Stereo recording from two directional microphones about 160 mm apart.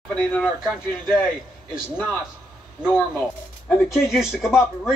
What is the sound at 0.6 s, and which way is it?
Speech, 5° right (ahead or behind).